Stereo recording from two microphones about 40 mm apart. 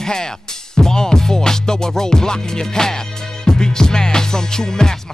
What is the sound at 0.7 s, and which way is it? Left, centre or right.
Music, centre.